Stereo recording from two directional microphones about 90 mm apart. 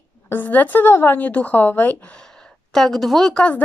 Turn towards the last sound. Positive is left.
turn(degrees=10)  # may be behind; listen again after turning